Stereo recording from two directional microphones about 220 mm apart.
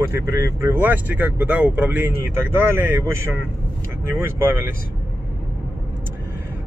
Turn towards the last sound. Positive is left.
turn(degrees=-10)  # may be behind; listen again after turning